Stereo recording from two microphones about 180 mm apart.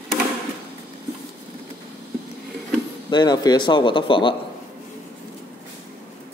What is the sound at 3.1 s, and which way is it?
Speech, 25° left (ahead or behind).